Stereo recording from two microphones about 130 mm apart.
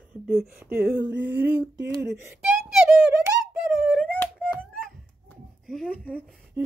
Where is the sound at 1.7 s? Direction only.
25° right (ahead or behind).